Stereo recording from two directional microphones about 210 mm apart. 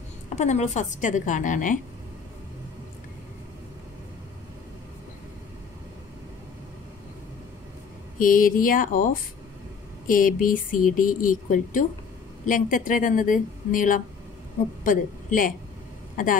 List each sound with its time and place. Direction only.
0.4 s speech: 35° left (ahead or behind)
8.2 s speech: 40° left (ahead or behind)